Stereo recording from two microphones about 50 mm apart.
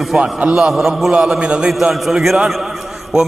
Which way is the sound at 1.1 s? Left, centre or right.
Centre.